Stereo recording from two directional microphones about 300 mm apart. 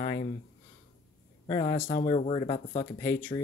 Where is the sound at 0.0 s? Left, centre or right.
Left.